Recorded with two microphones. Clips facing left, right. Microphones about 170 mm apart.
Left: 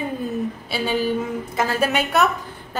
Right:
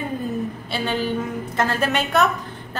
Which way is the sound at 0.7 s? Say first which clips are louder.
Left 2 dB; 5° left (ahead or behind).